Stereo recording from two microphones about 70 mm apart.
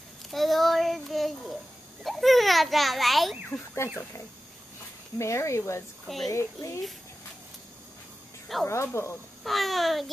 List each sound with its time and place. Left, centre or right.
0.3 s a child's voice: centre
5.2 s speech: left
6.0 s a child's voice: centre
6.3 s speech: left
8.6 s speech: left
9.4 s a child's voice: centre